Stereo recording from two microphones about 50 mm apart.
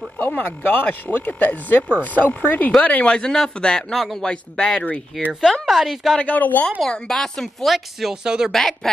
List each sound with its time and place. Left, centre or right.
0.4 s speech: left
2.8 s speech: left; by 4.3 s centre
4.3 s speech: centre
5.1 s speech: centre
6.2 s speech: left
6.9 s speech: centre
8.1 s speech: centre
8.5 s speech: centre